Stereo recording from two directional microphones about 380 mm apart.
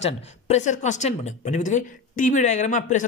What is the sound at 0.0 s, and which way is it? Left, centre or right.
Speech, centre.